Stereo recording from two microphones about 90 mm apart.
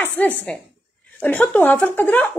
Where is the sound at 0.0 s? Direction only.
20° left (ahead or behind).